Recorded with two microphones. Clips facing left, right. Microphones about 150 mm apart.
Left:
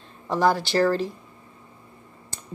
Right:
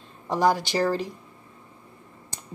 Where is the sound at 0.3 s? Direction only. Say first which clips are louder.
Left 1 dB; 15° right (ahead or behind).